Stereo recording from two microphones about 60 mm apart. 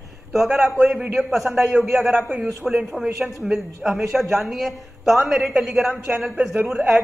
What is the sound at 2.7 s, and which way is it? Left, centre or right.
A woman's voice, centre.